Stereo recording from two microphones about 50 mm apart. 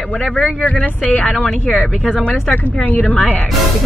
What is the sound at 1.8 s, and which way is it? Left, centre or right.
Speech, centre.